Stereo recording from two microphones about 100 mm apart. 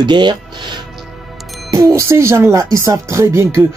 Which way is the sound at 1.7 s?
30° right (ahead or behind).